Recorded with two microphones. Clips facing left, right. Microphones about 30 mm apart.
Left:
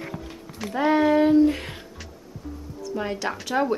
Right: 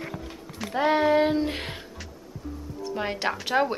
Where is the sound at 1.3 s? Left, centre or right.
Right.